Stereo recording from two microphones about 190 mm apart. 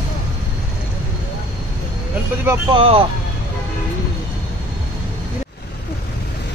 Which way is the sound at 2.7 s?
30° right (ahead or behind).